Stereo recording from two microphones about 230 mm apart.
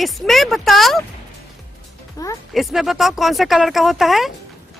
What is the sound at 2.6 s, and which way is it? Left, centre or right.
Speech, centre.